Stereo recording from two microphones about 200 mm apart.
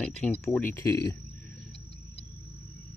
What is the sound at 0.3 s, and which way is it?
Speech, 10° left (ahead or behind).